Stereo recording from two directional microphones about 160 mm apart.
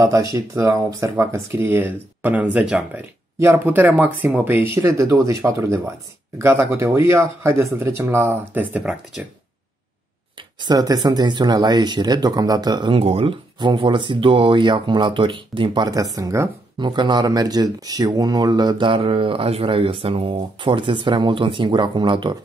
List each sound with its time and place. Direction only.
0.3 s speech: 20° right (ahead or behind)
10.3 s speech: 25° right (ahead or behind)